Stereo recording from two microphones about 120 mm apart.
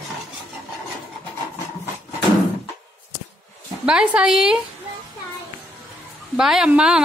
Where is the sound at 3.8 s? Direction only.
10° right (ahead or behind).